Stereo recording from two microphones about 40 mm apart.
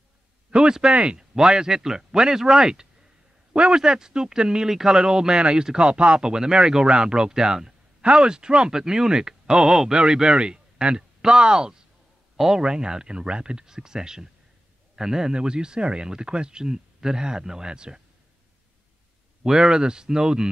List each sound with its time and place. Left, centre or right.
0.5 s speech: right
6.2 s speech: centre
19.4 s speech: centre